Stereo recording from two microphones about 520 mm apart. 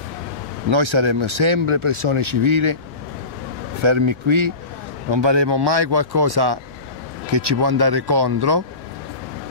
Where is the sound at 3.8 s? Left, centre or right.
Right.